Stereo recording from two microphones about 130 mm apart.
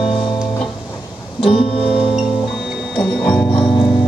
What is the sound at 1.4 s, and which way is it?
Music, 45° left (ahead or behind).